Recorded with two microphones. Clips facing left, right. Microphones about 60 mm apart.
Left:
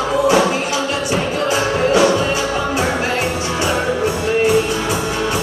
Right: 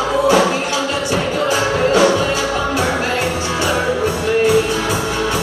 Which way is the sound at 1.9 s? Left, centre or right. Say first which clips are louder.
Even; centre.